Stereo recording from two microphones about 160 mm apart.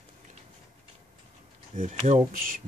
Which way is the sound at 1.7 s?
50° right (ahead or behind).